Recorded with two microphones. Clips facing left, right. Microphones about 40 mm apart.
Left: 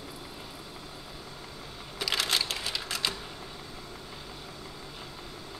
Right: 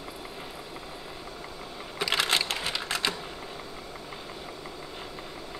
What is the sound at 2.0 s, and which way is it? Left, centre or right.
Typing, right.